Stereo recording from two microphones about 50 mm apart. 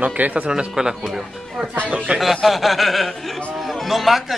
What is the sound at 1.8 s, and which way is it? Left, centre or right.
Speech, right.